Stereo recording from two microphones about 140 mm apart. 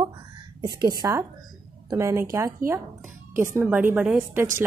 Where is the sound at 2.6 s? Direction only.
90° right.